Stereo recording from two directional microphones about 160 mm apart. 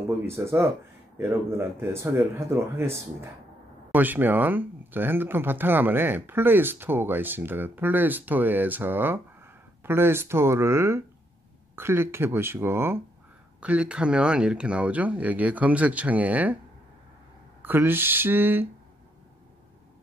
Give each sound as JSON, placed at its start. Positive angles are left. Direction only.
{"t": 0.3, "sound": "speech", "side_deg": -15}
{"t": 17.6, "sound": "speech", "side_deg": -10}